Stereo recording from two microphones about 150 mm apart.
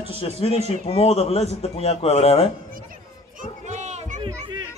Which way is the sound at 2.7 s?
65° right (ahead or behind).